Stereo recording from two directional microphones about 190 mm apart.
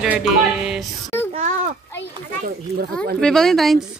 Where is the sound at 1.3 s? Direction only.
40° right (ahead or behind).